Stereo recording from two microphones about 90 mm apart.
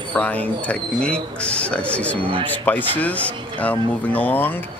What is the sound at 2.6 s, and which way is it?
Speech, 20° left (ahead or behind).